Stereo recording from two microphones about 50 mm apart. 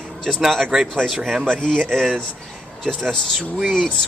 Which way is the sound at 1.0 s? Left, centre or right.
Centre.